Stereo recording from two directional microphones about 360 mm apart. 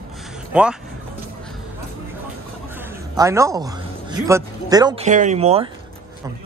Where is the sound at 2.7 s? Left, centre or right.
Centre.